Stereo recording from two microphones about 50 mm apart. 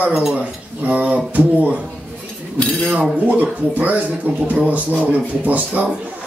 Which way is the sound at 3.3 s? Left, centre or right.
Right.